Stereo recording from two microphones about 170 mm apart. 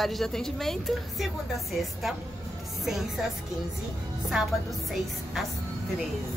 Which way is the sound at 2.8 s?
Centre (ahead or behind).